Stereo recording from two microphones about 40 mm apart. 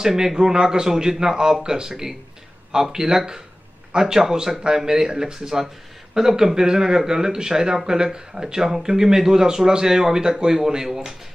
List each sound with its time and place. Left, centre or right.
0.0 s speech: centre